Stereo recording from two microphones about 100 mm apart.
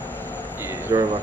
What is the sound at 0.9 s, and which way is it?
Speech, 45° right (ahead or behind).